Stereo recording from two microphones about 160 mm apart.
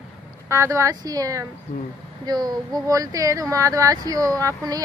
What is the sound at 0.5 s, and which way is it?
Speech, 20° right (ahead or behind).